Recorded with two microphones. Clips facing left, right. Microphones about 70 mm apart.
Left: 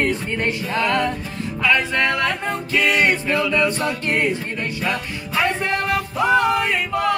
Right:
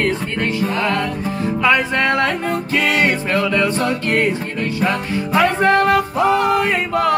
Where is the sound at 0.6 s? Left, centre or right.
Right.